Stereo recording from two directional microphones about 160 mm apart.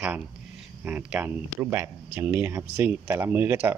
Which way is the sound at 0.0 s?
10° right (ahead or behind).